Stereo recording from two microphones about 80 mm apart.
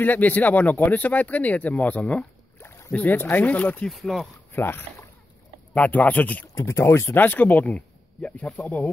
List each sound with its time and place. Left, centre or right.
0.0 s speech: left
2.6 s rowboat: left
2.9 s speech: left
3.8 s speech: centre
4.6 s speech: left
6.5 s speech: left